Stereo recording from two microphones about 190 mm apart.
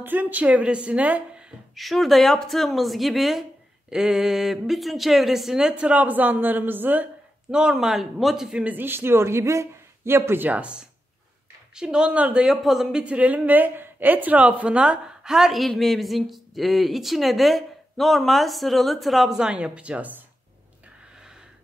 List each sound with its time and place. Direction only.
0.0 s a man's voice: 10° right (ahead or behind)